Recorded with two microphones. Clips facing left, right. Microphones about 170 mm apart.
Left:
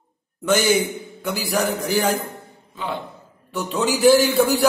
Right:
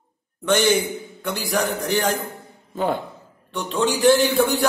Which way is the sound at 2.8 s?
45° right (ahead or behind).